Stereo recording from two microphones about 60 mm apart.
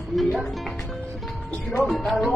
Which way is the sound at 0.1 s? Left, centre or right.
Centre.